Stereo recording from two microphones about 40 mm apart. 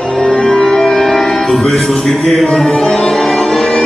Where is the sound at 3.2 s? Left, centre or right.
Centre.